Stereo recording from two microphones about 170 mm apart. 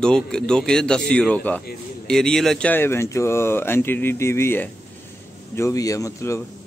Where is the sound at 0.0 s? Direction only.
5° left (ahead or behind).